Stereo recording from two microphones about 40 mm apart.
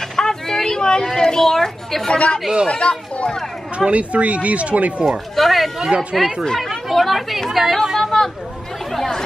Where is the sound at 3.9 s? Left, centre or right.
Right.